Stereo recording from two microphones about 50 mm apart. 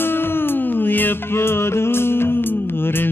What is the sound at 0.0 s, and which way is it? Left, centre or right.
Music, left.